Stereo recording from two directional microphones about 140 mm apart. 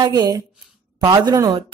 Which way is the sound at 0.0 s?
25° right (ahead or behind).